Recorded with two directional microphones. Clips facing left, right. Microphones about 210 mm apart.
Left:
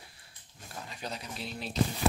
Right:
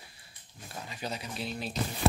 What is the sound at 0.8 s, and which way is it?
Speech, 5° right (ahead or behind).